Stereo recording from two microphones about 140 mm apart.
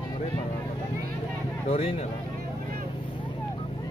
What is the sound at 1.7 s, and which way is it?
Speech, 45° left (ahead or behind).